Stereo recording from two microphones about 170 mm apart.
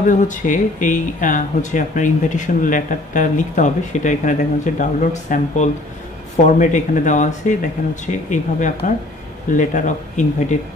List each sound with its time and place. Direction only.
0.0 s speech: 50° left (ahead or behind)